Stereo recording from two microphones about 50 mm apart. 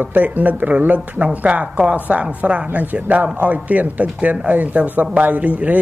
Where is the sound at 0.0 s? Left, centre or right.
Right.